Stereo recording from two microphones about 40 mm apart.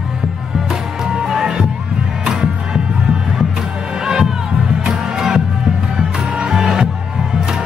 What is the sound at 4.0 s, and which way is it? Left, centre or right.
Music, centre.